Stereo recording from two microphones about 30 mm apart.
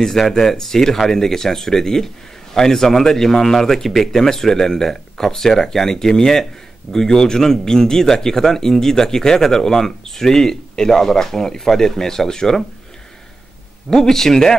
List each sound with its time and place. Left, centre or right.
0.4 s speech: centre
13.8 s speech: centre